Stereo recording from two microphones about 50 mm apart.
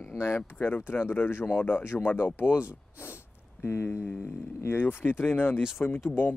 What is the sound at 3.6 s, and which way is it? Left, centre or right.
Speech, left.